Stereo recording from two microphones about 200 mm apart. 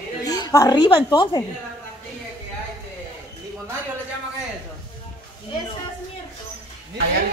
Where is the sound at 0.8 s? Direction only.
20° left (ahead or behind).